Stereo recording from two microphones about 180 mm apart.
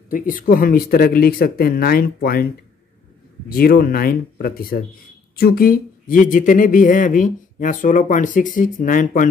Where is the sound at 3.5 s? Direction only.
55° left (ahead or behind).